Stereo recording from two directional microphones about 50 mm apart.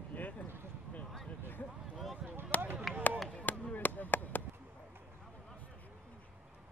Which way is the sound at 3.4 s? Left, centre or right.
Left.